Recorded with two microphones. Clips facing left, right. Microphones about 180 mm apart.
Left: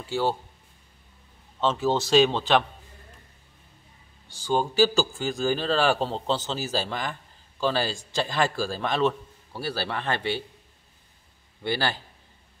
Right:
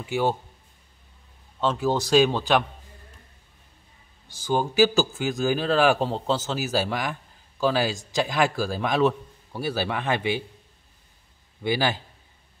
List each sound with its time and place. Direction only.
0.0 s a man's voice: 15° right (ahead or behind)
1.9 s a man's voice: 10° right (ahead or behind)
4.5 s a man's voice: 10° right (ahead or behind)
11.6 s a man's voice: 15° right (ahead or behind)